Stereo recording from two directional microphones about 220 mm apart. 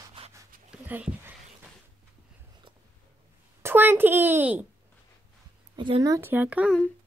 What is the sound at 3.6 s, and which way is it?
A child's voice, 10° right (ahead or behind).